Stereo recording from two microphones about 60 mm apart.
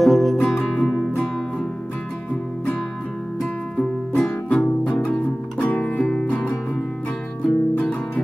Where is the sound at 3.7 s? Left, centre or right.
Centre.